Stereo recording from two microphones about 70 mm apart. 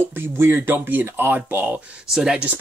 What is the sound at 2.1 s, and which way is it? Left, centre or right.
Speech, centre.